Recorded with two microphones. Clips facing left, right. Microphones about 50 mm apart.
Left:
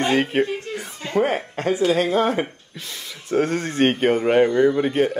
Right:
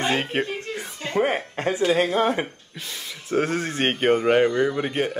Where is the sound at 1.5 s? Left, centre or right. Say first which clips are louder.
Left 2 dB; right.